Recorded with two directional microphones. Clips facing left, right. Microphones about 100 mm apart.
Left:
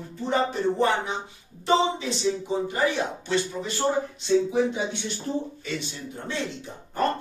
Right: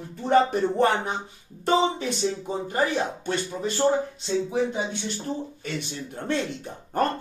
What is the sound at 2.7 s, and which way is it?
Speech, 50° right (ahead or behind).